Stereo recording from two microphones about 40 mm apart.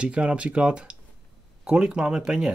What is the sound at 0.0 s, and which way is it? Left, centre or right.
Speech, right.